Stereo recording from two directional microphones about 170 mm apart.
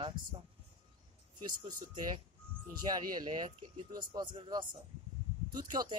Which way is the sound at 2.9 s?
25° right (ahead or behind).